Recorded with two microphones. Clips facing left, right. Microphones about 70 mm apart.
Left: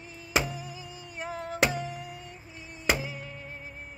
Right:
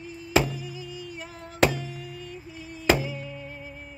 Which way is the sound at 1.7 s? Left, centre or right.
Left.